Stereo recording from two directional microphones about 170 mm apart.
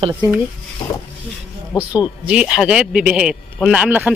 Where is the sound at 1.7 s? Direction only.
25° left (ahead or behind).